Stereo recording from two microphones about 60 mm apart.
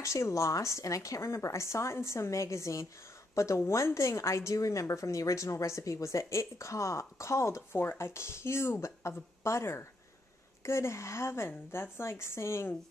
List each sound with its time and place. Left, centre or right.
0.0 s a woman's voice: left